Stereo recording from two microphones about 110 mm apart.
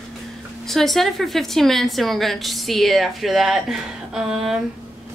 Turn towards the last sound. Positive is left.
turn(degrees=-5)  # may be behind; listen again after turning